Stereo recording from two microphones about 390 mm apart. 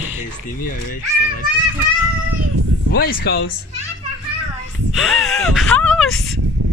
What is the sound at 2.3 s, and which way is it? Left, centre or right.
Speech, right.